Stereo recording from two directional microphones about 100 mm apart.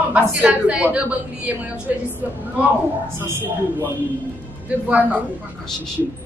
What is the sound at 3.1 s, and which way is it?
Speech, 25° right (ahead or behind).